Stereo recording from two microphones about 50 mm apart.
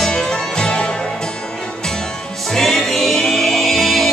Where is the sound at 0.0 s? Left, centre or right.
Centre.